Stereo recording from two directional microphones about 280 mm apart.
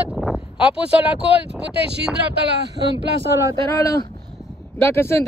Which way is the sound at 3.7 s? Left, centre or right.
Centre.